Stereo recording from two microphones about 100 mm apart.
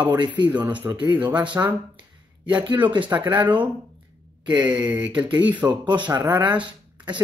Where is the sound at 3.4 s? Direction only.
15° right (ahead or behind).